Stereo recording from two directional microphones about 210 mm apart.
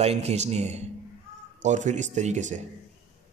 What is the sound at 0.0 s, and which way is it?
A man's voice, 30° right (ahead or behind).